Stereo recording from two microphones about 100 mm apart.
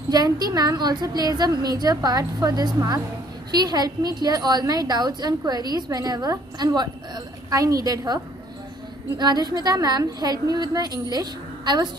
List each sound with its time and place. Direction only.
0.1 s a woman's voice: 40° right (ahead or behind)
9.2 s a woman's voice: 40° right (ahead or behind)